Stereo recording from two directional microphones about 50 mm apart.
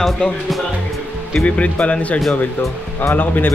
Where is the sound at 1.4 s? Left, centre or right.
Left.